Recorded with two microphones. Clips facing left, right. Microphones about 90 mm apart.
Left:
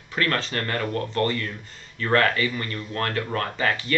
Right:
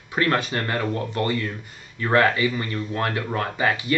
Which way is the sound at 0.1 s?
20° right (ahead or behind).